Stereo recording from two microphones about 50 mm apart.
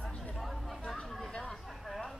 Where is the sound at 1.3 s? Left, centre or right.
Centre.